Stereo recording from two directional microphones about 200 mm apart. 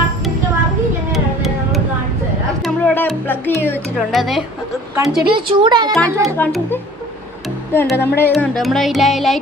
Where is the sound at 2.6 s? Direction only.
10° left (ahead or behind).